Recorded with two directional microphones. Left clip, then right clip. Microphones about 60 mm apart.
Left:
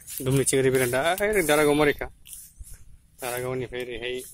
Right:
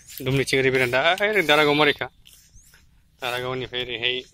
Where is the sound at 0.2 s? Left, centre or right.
Left.